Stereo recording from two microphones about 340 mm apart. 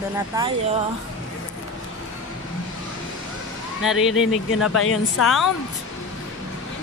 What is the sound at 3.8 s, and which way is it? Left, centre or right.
Speech, centre.